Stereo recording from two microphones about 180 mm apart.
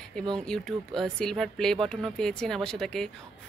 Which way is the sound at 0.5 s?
5° left (ahead or behind).